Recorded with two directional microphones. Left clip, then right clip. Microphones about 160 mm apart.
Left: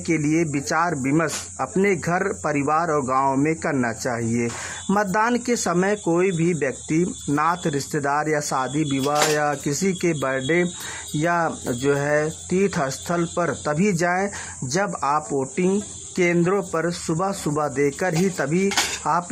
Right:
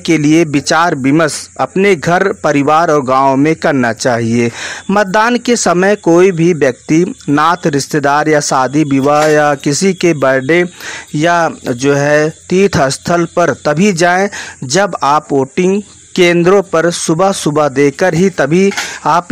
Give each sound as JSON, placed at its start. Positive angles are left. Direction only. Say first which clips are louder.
{"t": 0.1, "sound": "speech", "louder": "right 12 dB", "side_deg": -40}
{"t": 5.3, "sound": "speech", "louder": "right 11 dB", "side_deg": -25}
{"t": 5.8, "sound": "speech", "louder": "right 13 dB", "side_deg": -35}